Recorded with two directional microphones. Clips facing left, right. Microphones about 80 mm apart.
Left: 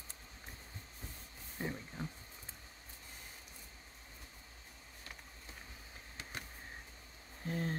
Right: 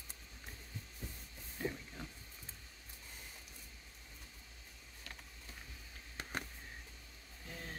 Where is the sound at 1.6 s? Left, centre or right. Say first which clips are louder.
Left 1 dB; left.